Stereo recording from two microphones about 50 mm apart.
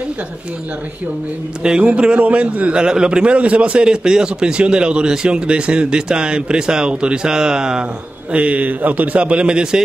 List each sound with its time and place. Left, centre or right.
1.6 s a man's voice: centre
8.3 s a man's voice: right